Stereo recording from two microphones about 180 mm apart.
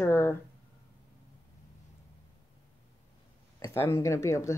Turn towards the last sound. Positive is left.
turn(degrees=15)  # may be behind; listen again after turning